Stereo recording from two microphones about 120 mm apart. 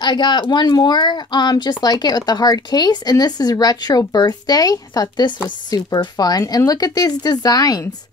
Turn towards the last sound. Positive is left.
turn(degrees=30)  # may be behind; listen again after turning